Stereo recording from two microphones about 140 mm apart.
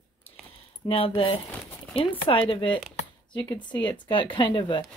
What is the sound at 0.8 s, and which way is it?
Speech, 40° left (ahead or behind).